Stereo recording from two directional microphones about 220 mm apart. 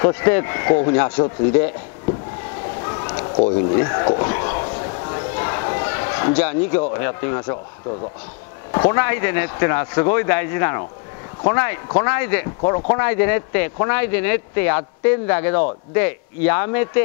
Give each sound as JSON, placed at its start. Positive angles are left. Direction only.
{"t": 0.0, "sound": "speech", "side_deg": 20}
{"t": 2.8, "sound": "a sound", "side_deg": 20}
{"t": 7.0, "sound": "speech", "side_deg": 20}
{"t": 8.7, "sound": "speech", "side_deg": 25}
{"t": 9.0, "sound": "speech", "side_deg": 15}